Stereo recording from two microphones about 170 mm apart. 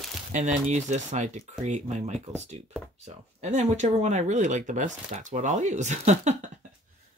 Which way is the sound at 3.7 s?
45° right (ahead or behind).